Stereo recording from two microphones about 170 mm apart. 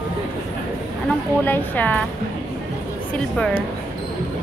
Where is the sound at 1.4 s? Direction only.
10° left (ahead or behind).